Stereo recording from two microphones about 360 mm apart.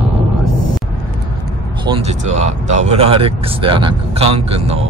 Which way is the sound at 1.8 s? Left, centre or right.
Centre.